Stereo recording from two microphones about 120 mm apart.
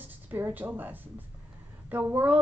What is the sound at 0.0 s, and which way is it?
A woman's voice, 15° right (ahead or behind).